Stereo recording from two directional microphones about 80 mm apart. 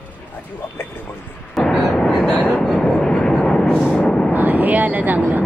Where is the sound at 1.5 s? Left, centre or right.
Centre.